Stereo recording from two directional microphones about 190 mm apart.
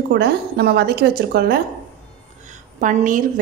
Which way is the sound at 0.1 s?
60° right (ahead or behind).